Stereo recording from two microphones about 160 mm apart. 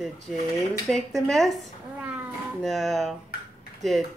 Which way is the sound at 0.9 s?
Centre (ahead or behind).